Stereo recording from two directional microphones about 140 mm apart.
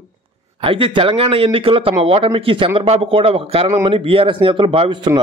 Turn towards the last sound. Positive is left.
turn(degrees=-35)  # may be behind; listen again after turning